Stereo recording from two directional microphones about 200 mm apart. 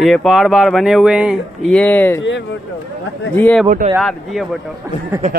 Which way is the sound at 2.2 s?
65° left (ahead or behind).